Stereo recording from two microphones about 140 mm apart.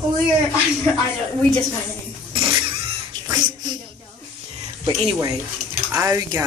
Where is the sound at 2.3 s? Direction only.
35° right (ahead or behind).